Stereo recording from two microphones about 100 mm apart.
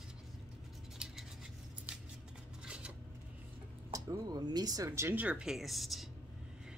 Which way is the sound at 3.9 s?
40° right (ahead or behind).